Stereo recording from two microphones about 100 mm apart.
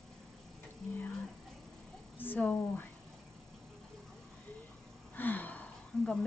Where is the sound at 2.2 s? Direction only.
20° left (ahead or behind).